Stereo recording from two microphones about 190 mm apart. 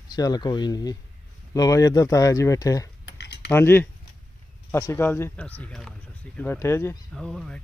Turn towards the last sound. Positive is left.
turn(degrees=0)  # may be behind; listen again after turning